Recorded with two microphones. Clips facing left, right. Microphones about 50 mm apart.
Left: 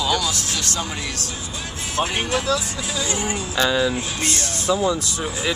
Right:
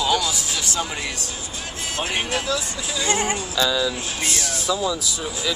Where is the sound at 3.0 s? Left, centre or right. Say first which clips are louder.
Right 4 dB; right.